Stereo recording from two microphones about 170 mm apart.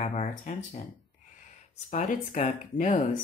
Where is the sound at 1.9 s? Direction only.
45° left (ahead or behind).